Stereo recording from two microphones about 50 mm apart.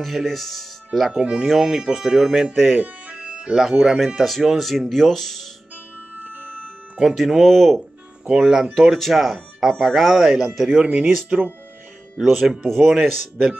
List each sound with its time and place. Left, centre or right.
0.0 s speech: centre
0.9 s speech: centre
2.5 s speech: centre
3.3 s music: right
3.5 s speech: centre
6.1 s music: right
7.0 s speech: centre
8.3 s speech: centre
8.7 s speech: centre; by 11.5 s right
12.2 s speech: centre